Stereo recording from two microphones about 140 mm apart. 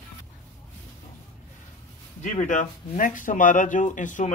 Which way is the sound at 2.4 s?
65° left (ahead or behind).